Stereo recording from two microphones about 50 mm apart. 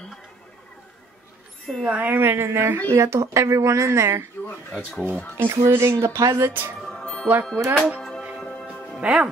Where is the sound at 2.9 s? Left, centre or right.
Right.